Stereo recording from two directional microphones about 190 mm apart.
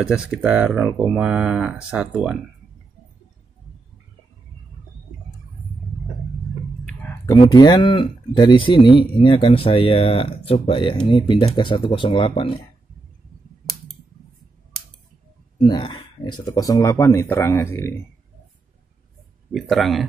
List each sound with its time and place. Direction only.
0.0 s speech: 5° right (ahead or behind)
6.9 s a sound: 5° left (ahead or behind)
7.2 s speech: 20° left (ahead or behind)
15.6 s speech: 25° left (ahead or behind)
19.5 s speech: centre (ahead or behind)